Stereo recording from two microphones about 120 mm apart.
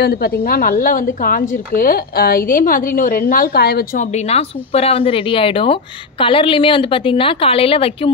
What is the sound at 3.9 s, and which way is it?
A woman's voice, 65° left (ahead or behind).